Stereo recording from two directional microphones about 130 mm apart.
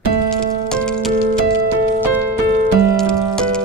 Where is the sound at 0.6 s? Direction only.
5° left (ahead or behind).